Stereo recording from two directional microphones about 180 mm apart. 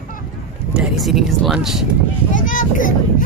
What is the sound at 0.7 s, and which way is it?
Speech, 5° right (ahead or behind).